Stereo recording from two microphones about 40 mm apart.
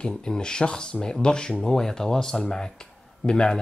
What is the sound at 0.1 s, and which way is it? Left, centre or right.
Speech, centre.